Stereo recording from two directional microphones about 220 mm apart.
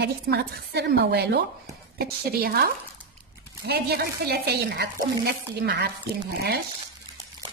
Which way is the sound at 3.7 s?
45° right (ahead or behind).